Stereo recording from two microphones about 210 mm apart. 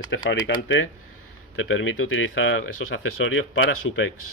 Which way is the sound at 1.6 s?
70° left (ahead or behind).